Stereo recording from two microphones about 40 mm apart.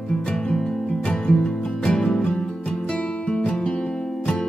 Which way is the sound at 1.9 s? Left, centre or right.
Left.